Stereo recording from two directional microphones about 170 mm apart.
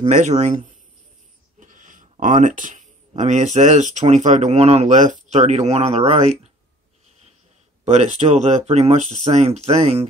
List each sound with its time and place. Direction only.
0.0 s speech: 50° right (ahead or behind)
1.6 s a sound: 50° right (ahead or behind)
3.2 s speech: 45° right (ahead or behind)
7.8 s speech: 40° right (ahead or behind)